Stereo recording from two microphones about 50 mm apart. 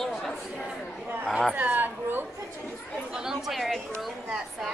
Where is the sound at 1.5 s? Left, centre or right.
Right.